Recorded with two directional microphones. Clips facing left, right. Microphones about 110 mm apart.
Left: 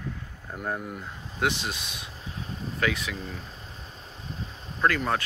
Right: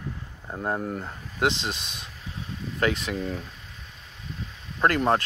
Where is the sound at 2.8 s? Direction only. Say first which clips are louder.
Right 4 dB; 40° right (ahead or behind).